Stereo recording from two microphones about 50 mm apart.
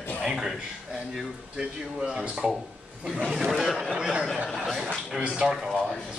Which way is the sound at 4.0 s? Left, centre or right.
Centre.